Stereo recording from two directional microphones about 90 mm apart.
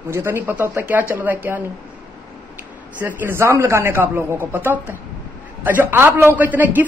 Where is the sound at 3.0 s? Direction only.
25° right (ahead or behind).